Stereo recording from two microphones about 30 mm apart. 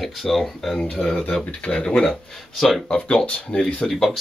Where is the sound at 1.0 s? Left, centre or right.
Left.